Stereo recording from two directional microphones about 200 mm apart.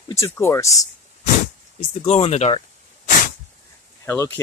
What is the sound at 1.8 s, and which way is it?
Speech, 30° left (ahead or behind).